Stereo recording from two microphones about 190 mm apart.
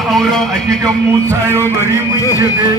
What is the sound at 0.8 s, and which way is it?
Speech, 15° right (ahead or behind).